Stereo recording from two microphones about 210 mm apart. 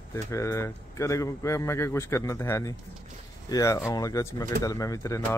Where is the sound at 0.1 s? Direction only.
15° left (ahead or behind).